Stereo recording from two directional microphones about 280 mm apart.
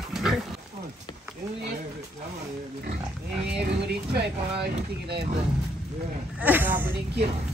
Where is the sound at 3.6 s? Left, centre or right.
Right.